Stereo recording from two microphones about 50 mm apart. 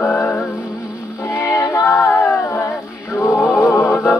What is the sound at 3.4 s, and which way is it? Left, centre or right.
Music, left.